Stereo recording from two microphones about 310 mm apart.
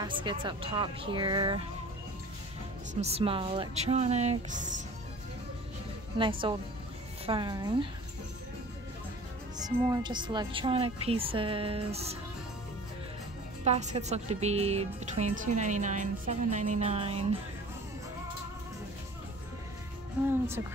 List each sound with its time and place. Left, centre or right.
0.0 s speech: centre
2.9 s a woman's voice: centre
6.5 s speech: centre
9.8 s speech: centre
13.7 s a woman's voice: right
20.2 s speech: centre